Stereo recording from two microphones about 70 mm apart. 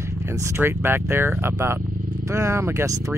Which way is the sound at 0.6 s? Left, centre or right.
Right.